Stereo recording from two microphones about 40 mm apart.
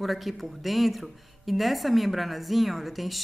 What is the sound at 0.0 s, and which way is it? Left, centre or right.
Speech, centre.